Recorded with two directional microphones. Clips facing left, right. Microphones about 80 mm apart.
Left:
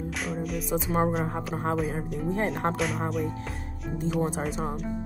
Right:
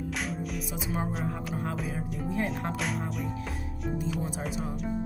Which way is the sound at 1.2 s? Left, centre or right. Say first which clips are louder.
Left 3 dB; left.